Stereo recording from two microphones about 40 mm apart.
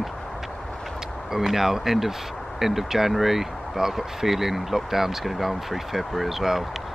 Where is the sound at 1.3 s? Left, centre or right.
Centre.